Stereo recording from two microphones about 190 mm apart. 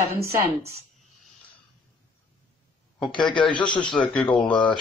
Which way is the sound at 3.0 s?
25° left (ahead or behind).